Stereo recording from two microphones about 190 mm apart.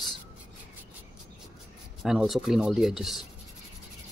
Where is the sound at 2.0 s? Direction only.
Centre (ahead or behind).